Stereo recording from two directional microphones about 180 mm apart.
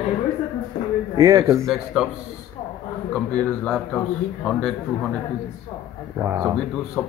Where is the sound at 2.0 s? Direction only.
Centre (ahead or behind).